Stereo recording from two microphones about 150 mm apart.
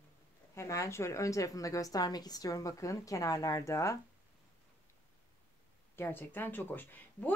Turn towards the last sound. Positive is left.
turn(degrees=10)  # may be behind; listen again after turning